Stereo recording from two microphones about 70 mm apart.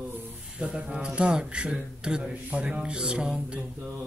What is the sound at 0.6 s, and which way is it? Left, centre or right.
A man's voice, centre.